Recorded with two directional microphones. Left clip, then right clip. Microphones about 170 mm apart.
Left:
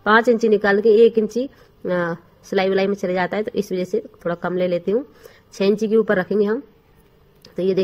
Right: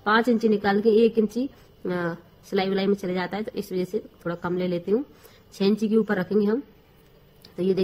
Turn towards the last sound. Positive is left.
turn(degrees=15)  # may be behind; listen again after turning